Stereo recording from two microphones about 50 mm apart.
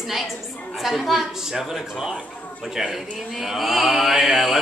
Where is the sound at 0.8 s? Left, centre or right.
Centre.